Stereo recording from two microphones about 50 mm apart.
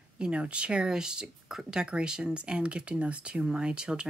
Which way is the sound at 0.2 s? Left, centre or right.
Right.